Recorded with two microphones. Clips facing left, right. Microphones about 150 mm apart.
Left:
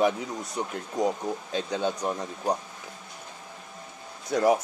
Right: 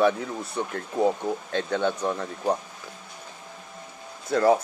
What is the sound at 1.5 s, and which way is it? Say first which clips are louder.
Speech: right 3 dB; 10° left (ahead or behind).